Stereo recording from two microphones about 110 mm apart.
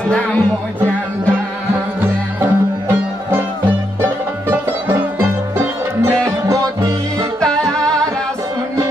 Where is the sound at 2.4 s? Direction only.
20° right (ahead or behind).